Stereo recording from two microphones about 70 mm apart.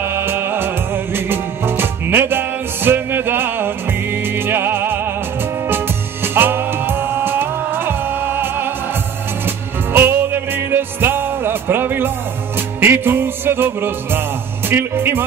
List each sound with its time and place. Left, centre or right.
0.0 s music: right
6.2 s music: right
9.9 s music: right
14.7 s a man's voice: right